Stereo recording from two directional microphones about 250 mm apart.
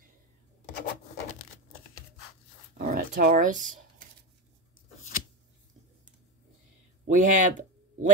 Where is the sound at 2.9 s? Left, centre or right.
Right.